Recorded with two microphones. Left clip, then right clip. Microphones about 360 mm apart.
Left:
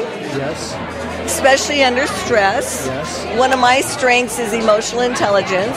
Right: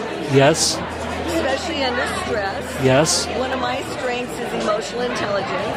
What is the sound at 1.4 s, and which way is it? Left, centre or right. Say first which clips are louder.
A woman's voice: left 14 dB; left.